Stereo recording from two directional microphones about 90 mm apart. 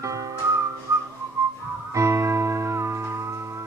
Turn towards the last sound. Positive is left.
turn(degrees=-30)  # may be behind; listen again after turning